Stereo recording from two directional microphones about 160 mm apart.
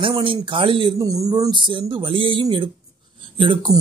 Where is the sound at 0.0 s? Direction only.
35° right (ahead or behind).